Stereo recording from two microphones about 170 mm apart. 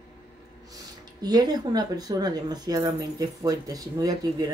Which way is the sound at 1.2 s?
25° right (ahead or behind).